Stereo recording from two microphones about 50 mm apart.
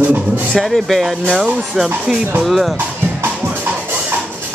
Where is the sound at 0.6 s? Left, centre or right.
Centre.